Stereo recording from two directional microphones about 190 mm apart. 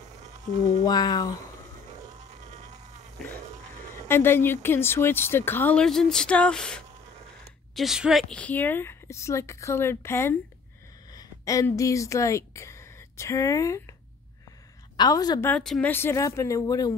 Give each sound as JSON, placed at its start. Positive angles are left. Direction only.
{"t": 0.8, "sound": "a woman's voice", "side_deg": 20}
{"t": 2.4, "sound": "a sound", "side_deg": -35}
{"t": 4.1, "sound": "a woman's voice", "side_deg": 10}
{"t": 15.0, "sound": "a woman's voice", "side_deg": 20}
{"t": 15.5, "sound": "speech", "side_deg": 5}